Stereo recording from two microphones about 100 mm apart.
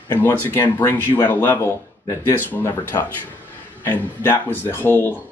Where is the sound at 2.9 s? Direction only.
45° left (ahead or behind).